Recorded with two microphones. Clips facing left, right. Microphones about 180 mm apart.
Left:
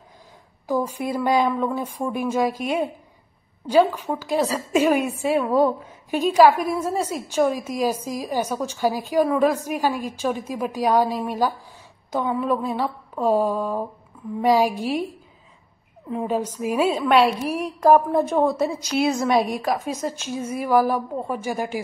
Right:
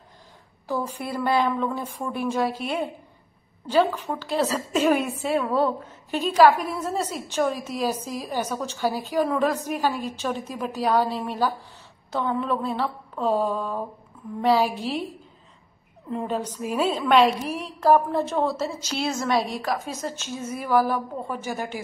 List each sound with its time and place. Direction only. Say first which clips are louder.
0.7 s a woman's voice: left 5 dB; 10° left (ahead or behind)
16.1 s a woman's voice: left 3 dB; 5° left (ahead or behind)
20.0 s a woman's voice: left 4 dB; 10° left (ahead or behind)